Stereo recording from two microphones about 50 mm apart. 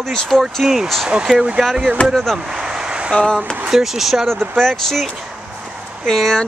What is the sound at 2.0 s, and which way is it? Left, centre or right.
Speech, left.